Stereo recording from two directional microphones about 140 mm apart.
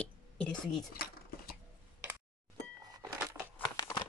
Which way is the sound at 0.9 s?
90° left.